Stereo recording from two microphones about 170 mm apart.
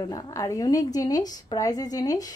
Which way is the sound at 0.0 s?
20° left (ahead or behind).